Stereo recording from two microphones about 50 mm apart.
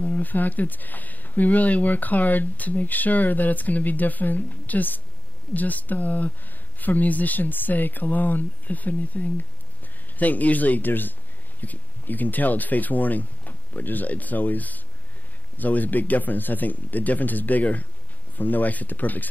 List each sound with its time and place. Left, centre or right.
0.0 s speech: left